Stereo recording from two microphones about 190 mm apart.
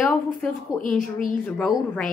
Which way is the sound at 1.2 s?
45° left (ahead or behind).